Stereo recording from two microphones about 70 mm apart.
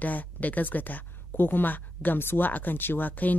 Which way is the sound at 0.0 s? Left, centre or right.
Left.